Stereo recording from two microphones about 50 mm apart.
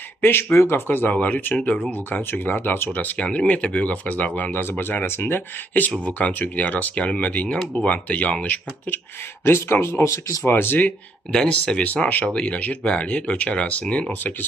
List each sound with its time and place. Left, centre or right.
0.2 s speech: left
0.6 s speech: left
0.8 s speech: left
1.1 s speech: left
1.9 s speech: left
5.9 s speech: left
9.4 s speech: left
10.4 s speech: left
11.3 s speech: centre
11.8 s speech: left
12.3 s speech: left